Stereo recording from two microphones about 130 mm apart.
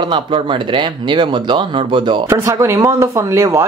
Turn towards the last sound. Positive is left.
turn(degrees=-25)  # may be behind; listen again after turning